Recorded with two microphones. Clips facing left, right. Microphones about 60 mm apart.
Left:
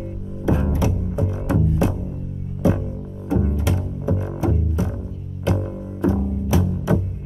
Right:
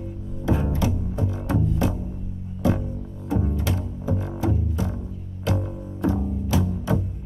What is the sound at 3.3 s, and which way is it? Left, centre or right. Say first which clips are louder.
Double bass: left 3 dB; centre.